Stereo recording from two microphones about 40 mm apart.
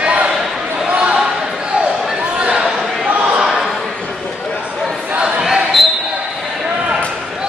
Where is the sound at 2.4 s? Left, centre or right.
Right.